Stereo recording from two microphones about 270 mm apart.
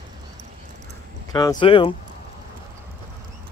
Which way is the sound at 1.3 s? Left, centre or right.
Centre.